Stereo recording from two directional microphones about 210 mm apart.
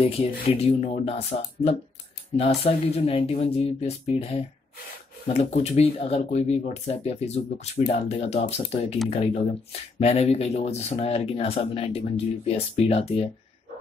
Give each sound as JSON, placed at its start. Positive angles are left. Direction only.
{"t": 0.0, "sound": "speech", "side_deg": 25}